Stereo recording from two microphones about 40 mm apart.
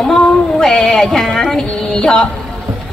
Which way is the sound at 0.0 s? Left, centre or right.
Centre.